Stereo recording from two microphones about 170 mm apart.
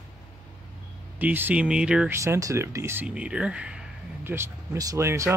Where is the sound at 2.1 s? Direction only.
15° right (ahead or behind).